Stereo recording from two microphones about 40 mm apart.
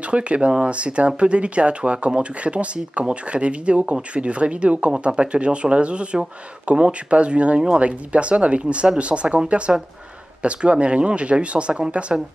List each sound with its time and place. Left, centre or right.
0.0 s speech: right
10.4 s speech: right